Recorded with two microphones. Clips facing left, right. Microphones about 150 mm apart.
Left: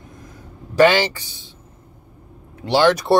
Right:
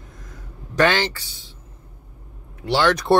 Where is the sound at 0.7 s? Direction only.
10° left (ahead or behind).